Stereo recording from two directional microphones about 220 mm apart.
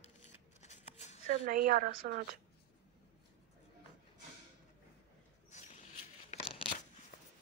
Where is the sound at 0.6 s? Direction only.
30° left (ahead or behind).